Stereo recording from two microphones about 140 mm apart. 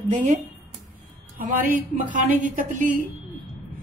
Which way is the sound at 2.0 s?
70° right (ahead or behind).